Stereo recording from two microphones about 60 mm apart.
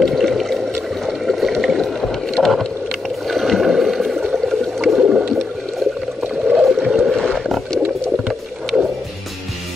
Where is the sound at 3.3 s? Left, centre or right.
Centre.